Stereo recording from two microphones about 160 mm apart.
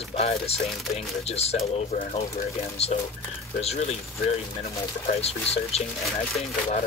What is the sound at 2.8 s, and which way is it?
Speech, 40° left (ahead or behind).